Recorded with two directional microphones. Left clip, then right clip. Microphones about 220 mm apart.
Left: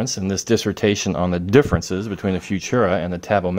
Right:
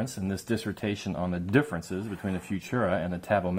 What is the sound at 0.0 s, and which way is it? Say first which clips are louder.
Speech: left 10 dB; 40° left (ahead or behind).